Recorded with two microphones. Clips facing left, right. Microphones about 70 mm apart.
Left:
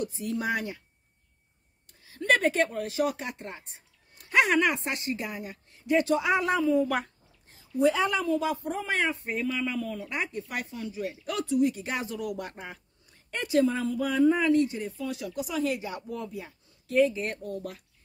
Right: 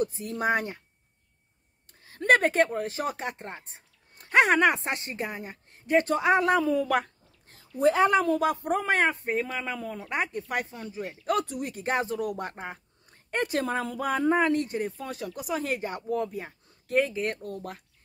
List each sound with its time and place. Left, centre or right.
0.0 s speech: right
1.9 s a woman's voice: right
7.9 s speech: right
8.2 s speech: right
9.2 s speech: right